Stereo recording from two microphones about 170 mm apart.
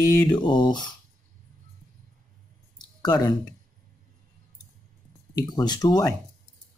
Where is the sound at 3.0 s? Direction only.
25° left (ahead or behind).